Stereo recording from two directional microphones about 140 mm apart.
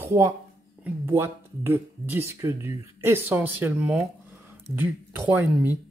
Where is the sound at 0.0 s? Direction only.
20° right (ahead or behind).